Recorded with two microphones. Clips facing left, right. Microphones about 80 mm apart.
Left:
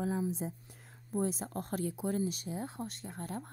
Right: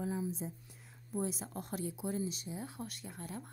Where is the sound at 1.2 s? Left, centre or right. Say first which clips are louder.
Left 4 dB; left.